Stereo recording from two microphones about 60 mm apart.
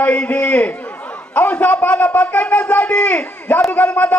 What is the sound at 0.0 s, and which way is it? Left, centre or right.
Speech, left.